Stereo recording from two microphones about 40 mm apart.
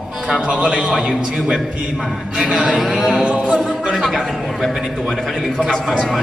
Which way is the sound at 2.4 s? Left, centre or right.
Right.